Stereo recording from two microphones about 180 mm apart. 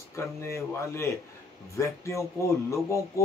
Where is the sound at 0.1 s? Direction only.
15° left (ahead or behind).